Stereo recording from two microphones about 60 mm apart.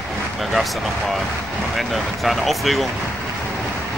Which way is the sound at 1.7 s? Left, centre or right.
Centre.